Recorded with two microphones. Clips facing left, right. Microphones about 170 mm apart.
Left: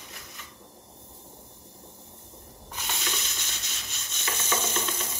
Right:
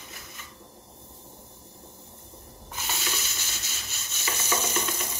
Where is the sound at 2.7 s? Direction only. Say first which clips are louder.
Right 1 dB; 5° right (ahead or behind).